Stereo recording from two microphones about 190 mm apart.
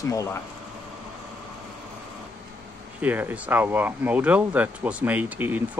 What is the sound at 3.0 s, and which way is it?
Speech, 10° right (ahead or behind).